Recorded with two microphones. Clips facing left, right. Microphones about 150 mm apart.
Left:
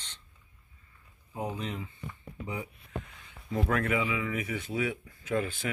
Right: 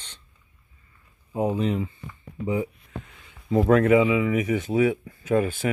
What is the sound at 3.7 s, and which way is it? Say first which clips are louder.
Speech: right 13 dB; 25° right (ahead or behind).